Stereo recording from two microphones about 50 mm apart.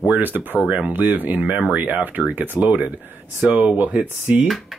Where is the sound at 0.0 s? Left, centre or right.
Right.